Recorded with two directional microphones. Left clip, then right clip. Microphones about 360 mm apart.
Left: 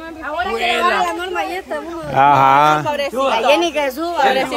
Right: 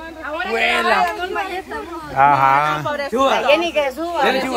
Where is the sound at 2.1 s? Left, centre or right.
Centre.